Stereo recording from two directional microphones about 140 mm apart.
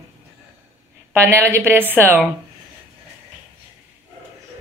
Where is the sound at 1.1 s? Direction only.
20° right (ahead or behind).